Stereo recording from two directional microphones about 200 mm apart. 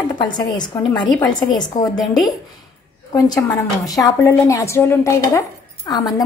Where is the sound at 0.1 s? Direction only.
20° left (ahead or behind).